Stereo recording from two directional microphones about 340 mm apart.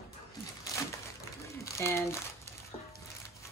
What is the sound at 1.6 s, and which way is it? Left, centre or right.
Crumpling, centre.